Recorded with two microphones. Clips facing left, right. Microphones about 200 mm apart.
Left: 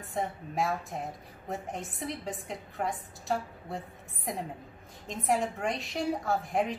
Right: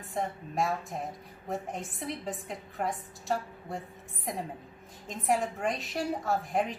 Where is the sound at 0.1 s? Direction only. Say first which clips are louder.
Even; centre (ahead or behind).